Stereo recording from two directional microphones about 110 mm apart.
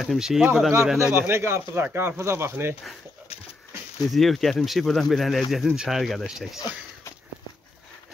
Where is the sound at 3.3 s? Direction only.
70° left (ahead or behind).